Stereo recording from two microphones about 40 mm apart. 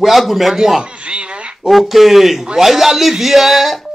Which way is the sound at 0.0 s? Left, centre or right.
Centre.